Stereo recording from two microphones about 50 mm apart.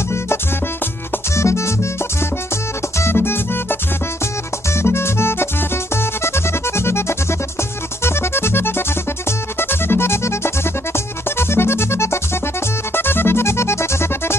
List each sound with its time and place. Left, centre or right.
1.3 s music: left
3.0 s music: left
4.7 s music: left
12.9 s music: left